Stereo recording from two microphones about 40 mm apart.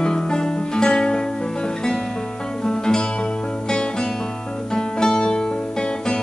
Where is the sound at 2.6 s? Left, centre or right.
Centre.